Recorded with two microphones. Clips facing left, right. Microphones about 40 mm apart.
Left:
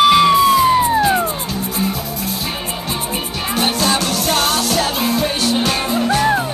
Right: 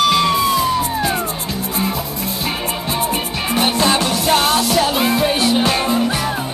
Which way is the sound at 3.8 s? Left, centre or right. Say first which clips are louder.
Right 1 dB; right.